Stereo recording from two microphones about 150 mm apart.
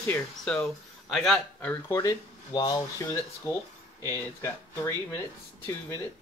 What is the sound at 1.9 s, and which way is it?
Speech, 25° left (ahead or behind).